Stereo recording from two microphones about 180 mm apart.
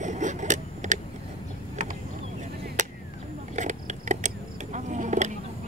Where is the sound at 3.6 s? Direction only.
40° right (ahead or behind).